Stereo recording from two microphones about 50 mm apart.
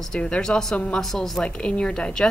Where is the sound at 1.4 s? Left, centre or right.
Left.